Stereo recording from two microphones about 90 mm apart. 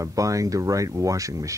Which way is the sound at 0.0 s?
40° right (ahead or behind).